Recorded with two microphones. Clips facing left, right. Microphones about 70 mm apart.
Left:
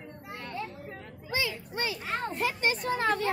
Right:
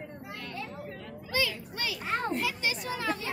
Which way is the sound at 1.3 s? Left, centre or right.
Left.